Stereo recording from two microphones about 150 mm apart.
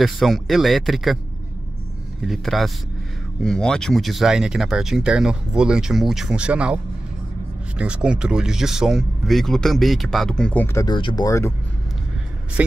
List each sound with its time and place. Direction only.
0.0 s speech: centre (ahead or behind)
2.2 s speech: centre (ahead or behind); by 10.9 s 15° left (ahead or behind)
10.9 s speech: 30° left (ahead or behind)
11.2 s speech: 20° left (ahead or behind)
12.6 s speech: 10° right (ahead or behind)